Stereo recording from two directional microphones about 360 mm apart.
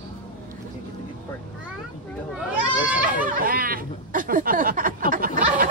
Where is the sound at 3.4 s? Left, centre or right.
Right.